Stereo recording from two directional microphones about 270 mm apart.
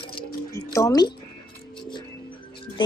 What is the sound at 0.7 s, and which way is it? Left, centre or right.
Speech, centre.